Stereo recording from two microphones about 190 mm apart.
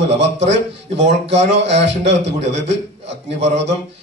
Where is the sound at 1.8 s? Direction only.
70° right (ahead or behind).